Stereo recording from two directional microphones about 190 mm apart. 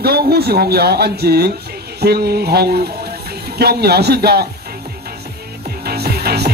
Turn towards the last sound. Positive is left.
turn(degrees=-55)  # may be behind; listen again after turning